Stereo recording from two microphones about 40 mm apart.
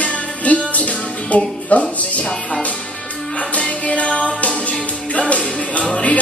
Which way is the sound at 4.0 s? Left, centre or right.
Left.